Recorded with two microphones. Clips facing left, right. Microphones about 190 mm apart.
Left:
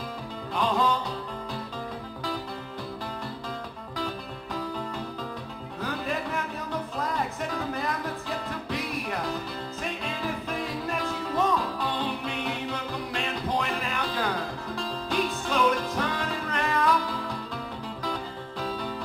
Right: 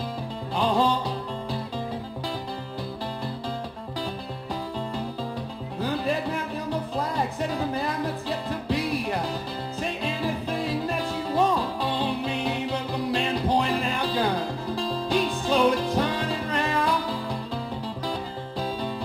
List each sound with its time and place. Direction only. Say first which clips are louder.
0.6 s music: right 3 dB; 30° right (ahead or behind)
5.8 s music: right 5 dB; 30° right (ahead or behind)
8.5 s music: right 6 dB; 30° right (ahead or behind)
11.0 s music: right 2 dB; 30° right (ahead or behind)
13.1 s music: right 6 dB; 30° right (ahead or behind)